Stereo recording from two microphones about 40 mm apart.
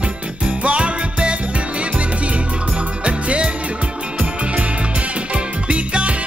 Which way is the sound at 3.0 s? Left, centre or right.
Right.